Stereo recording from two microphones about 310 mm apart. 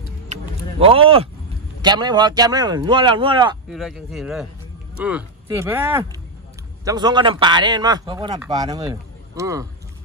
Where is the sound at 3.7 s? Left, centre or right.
Centre.